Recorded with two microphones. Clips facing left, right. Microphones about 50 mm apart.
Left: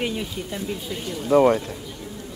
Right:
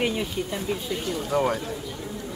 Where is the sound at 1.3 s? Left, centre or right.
Left.